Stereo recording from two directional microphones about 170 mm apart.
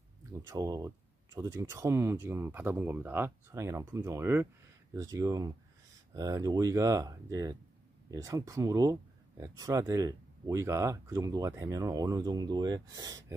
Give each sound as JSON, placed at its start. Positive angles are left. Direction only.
{"t": 0.5, "sound": "speech", "side_deg": -20}